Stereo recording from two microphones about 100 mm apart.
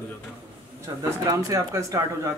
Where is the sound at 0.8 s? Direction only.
35° right (ahead or behind).